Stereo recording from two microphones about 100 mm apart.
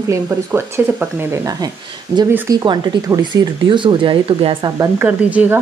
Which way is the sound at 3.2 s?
50° right (ahead or behind).